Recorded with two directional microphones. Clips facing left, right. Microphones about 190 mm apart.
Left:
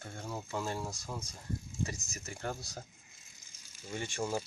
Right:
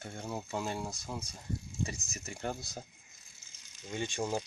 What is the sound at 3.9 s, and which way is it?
Speech, 25° right (ahead or behind).